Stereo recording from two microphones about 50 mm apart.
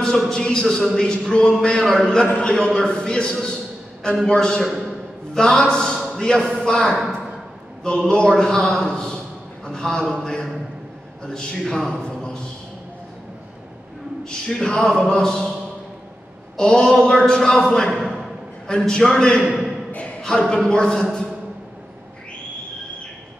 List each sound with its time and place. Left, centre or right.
0.3 s a man's voice: centre
8.0 s a man's voice: centre
11.6 s a man's voice: centre
12.1 s a sound: centre
14.3 s a man's voice: centre
16.5 s a man's voice: centre
18.7 s a man's voice: centre
19.9 s a sound: left
20.2 s a man's voice: centre